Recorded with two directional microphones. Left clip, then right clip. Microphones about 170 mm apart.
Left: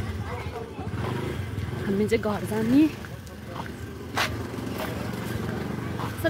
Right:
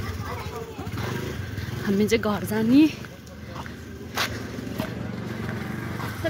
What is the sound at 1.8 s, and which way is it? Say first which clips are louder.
Speech: right 2 dB; 10° right (ahead or behind).